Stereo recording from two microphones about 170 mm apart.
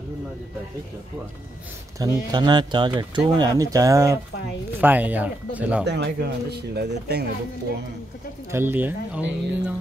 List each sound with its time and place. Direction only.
2.0 s speech: 20° right (ahead or behind)
5.9 s speech: 85° right
8.5 s speech: 15° right (ahead or behind)